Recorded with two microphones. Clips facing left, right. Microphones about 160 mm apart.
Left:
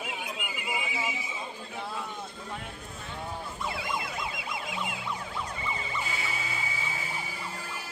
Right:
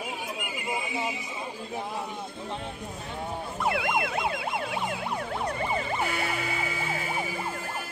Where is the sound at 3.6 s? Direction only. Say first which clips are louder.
Right 8 dB; 60° right (ahead or behind).